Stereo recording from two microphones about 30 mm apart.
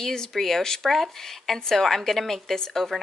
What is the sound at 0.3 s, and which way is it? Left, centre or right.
Speech, centre.